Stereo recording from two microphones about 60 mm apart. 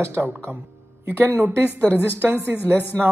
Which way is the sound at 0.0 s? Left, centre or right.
Right.